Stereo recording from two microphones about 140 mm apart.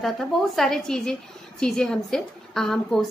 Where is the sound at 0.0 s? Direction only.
5° left (ahead or behind).